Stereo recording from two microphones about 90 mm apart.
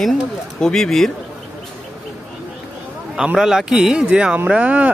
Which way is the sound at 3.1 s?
5° right (ahead or behind).